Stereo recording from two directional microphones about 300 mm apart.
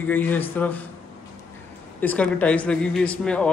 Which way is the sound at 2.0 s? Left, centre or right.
Centre.